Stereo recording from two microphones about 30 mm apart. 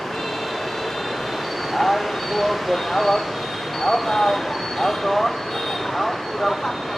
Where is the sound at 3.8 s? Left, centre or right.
Centre.